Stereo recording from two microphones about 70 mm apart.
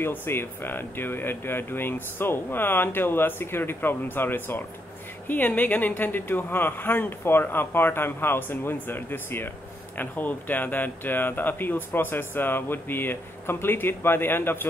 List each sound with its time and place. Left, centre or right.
0.0 s speech: left